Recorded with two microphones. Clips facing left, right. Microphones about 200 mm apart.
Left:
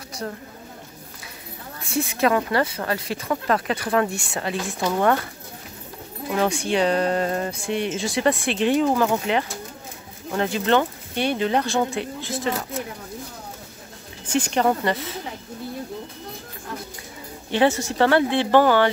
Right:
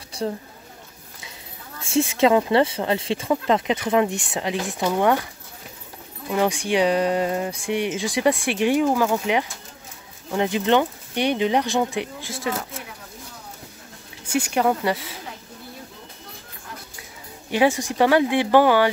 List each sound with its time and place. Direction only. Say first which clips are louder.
0.2 s speech: right 5 dB; 25° right (ahead or behind)
2.0 s speech: right 3 dB; 25° right (ahead or behind)
6.3 s speech: right 1 dB; 15° right (ahead or behind)
10.3 s speech: right 1 dB; 15° right (ahead or behind)
14.3 s speech: even; 10° right (ahead or behind)
17.5 s speech: even; 10° right (ahead or behind)